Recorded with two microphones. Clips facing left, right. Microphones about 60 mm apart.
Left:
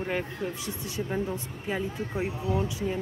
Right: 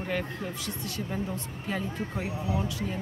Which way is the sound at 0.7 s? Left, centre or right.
Centre.